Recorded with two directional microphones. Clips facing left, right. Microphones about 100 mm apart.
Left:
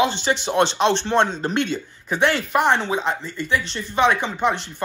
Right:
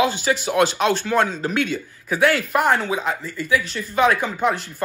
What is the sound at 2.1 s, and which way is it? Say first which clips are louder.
Speech: right 1 dB; centre (ahead or behind).